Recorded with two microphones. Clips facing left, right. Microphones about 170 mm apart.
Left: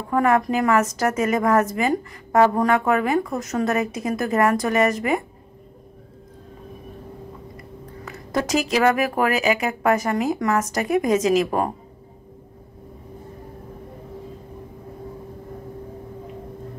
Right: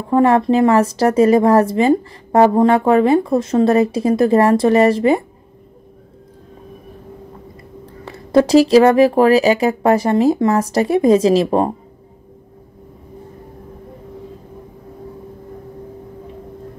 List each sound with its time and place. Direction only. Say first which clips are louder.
0.1 s speech: right 6 dB; 30° right (ahead or behind)
8.0 s speech: right 11 dB; 30° right (ahead or behind)